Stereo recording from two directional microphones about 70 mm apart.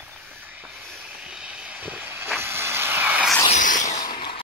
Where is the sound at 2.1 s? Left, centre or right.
Right.